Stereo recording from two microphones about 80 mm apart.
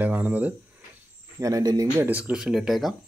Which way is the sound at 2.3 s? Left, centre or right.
Centre.